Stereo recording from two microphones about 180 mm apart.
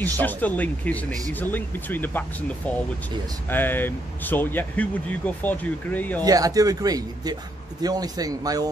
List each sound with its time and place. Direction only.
0.0 s speech: 10° left (ahead or behind)
6.2 s speech: 20° right (ahead or behind)